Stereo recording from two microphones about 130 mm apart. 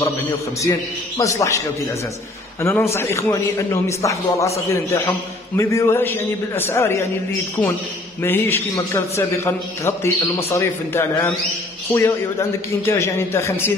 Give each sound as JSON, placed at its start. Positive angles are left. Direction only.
{"t": 0.6, "sound": "a man's voice", "side_deg": 25}
{"t": 2.6, "sound": "a man's voice", "side_deg": 20}
{"t": 8.2, "sound": "a man's voice", "side_deg": 15}